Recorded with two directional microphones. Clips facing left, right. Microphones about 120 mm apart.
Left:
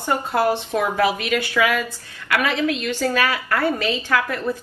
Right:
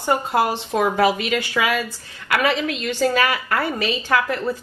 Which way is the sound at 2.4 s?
20° right (ahead or behind).